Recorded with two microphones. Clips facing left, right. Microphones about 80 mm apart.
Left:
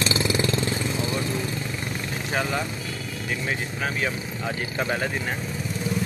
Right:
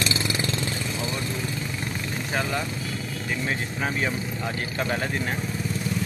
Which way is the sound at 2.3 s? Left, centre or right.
Centre.